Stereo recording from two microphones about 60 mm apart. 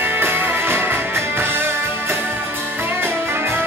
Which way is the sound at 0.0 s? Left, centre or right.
Right.